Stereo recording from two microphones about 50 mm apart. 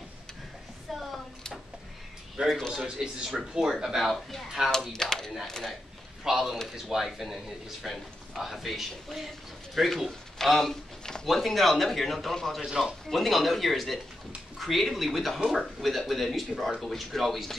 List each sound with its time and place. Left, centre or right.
2.4 s a man's voice: right; by 5.8 s centre
6.2 s speech: centre
12.6 s speech: centre
13.1 s speech: centre